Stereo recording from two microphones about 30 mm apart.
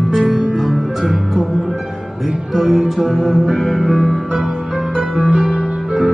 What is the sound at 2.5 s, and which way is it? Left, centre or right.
Music, centre.